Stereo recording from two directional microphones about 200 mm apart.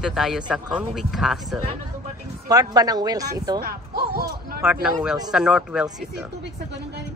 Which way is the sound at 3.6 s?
50° right (ahead or behind).